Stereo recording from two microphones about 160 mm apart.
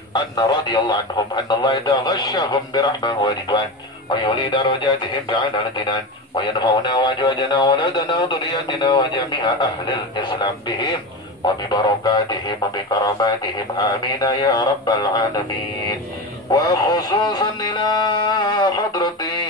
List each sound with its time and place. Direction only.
0.1 s speech: 25° left (ahead or behind)
16.5 s speech: 25° left (ahead or behind)